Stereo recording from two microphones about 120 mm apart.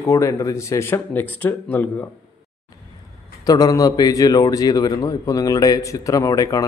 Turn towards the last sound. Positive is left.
turn(degrees=30)  # may be behind; listen again after turning